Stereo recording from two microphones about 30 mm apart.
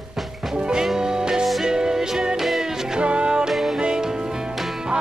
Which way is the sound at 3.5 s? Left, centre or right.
Centre.